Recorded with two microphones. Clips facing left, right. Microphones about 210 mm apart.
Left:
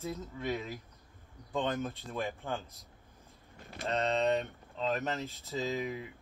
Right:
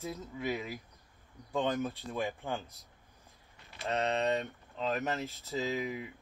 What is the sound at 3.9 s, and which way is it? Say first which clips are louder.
Speech: left 1 dB; 15° right (ahead or behind).